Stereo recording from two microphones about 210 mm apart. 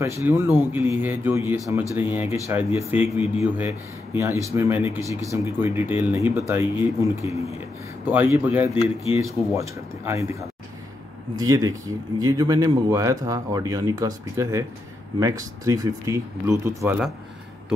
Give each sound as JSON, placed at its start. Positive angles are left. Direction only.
{"t": 0.0, "sound": "speech", "side_deg": -15}
{"t": 11.3, "sound": "speech", "side_deg": -15}